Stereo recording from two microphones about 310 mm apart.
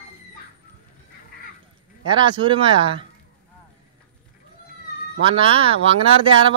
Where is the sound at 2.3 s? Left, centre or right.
Centre.